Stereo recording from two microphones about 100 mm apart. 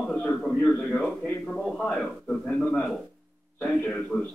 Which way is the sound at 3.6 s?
10° left (ahead or behind).